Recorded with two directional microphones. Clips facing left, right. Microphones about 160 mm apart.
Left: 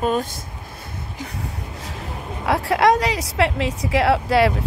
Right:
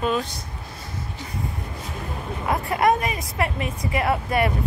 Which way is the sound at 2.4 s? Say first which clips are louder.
Left 4 dB; 90° left.